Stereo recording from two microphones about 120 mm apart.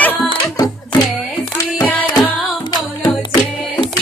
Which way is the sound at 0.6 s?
35° left (ahead or behind).